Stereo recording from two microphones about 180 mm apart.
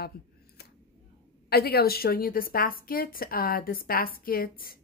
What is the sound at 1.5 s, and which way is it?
Speech, 60° left (ahead or behind).